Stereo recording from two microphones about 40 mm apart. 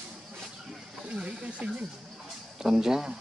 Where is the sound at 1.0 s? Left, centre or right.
Right.